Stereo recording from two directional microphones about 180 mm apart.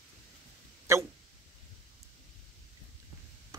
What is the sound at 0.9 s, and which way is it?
Hiccup, 15° right (ahead or behind).